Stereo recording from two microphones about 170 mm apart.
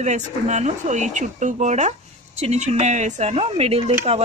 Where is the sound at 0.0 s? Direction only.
45° right (ahead or behind).